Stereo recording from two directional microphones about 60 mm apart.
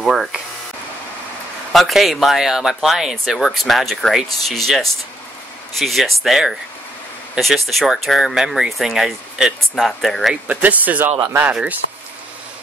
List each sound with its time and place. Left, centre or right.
0.0 s a sound: centre
1.7 s speech: centre
10.4 s speech: right